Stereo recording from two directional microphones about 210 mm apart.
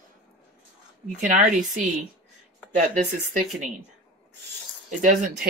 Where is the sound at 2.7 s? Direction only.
35° right (ahead or behind).